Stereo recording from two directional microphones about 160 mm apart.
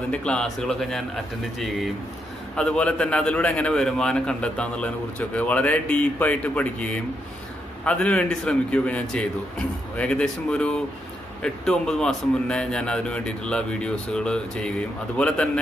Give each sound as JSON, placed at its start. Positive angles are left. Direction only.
{"t": 0.1, "sound": "a man's voice", "side_deg": 5}